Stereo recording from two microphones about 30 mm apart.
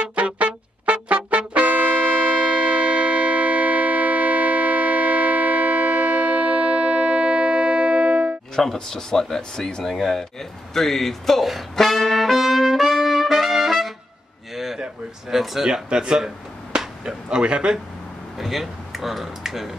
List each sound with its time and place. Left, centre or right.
0.0 s music: right
8.7 s speech: centre
11.7 s trumpet: centre
14.5 s a sound: centre
15.2 s speech: centre
15.7 s speech: right
16.7 s a sound: right
18.4 s speech: centre